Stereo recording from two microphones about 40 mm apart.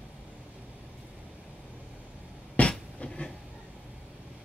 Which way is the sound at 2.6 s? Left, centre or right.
Left.